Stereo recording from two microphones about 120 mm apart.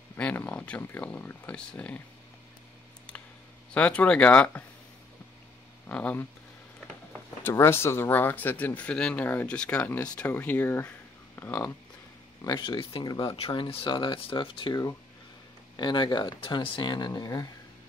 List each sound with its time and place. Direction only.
0.1 s speech: 15° left (ahead or behind)
3.7 s speech: 10° left (ahead or behind)
5.9 s speech: 15° left (ahead or behind)
7.4 s speech: 20° left (ahead or behind)
12.4 s speech: 40° left (ahead or behind)